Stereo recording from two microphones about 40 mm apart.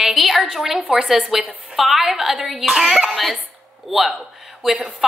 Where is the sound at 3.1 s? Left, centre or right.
Centre.